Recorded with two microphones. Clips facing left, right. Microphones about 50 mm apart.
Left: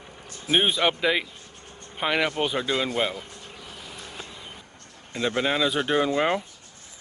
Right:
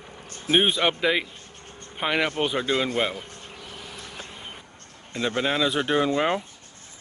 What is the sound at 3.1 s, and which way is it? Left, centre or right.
Vehicle, right.